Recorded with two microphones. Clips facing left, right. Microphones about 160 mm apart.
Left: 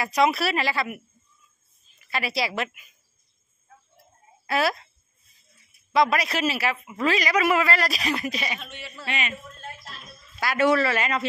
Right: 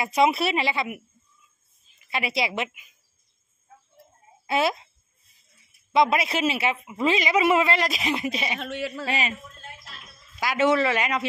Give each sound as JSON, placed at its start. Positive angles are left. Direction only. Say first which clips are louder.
{"t": 0.0, "sound": "a woman's voice", "louder": "right 1 dB", "side_deg": -25}
{"t": 2.0, "sound": "a woman's voice", "louder": "even", "side_deg": -20}
{"t": 4.5, "sound": "a woman's voice", "louder": "right 1 dB", "side_deg": -20}
{"t": 5.9, "sound": "a woman's voice", "louder": "right 1 dB", "side_deg": -25}
{"t": 8.5, "sound": "a man's voice", "louder": "right 10 dB", "side_deg": -90}
{"t": 8.9, "sound": "speech", "louder": "left 1 dB", "side_deg": -35}
{"t": 10.4, "sound": "a man's voice", "louder": "even", "side_deg": -15}